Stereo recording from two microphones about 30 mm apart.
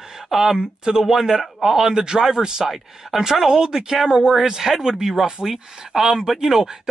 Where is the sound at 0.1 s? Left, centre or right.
Centre.